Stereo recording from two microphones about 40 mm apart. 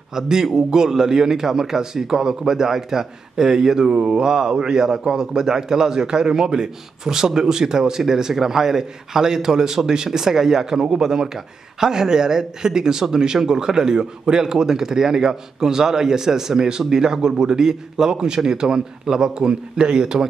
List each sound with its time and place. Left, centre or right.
0.1 s a man's voice: centre